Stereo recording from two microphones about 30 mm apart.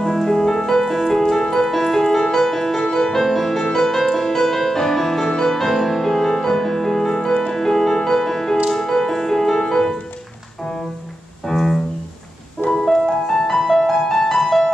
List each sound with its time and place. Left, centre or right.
0.1 s music: centre
0.9 s music: centre
1.2 s music: centre
11.4 s music: centre